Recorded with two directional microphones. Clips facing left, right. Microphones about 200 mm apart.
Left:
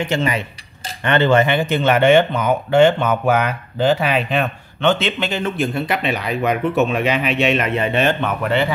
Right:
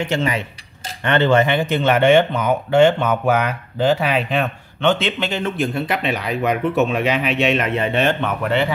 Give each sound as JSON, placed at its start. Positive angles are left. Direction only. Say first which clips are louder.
{"t": 0.0, "sound": "cutlery", "louder": "left 1 dB", "side_deg": 15}
{"t": 1.0, "sound": "speech", "louder": "left 1 dB", "side_deg": 5}